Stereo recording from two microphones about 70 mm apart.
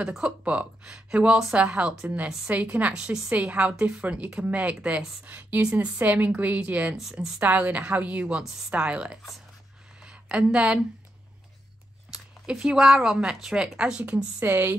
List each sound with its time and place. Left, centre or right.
0.1 s speech: centre
7.1 s speech: centre
7.3 s a woman's voice: right
12.1 s speech: centre
14.4 s speech: right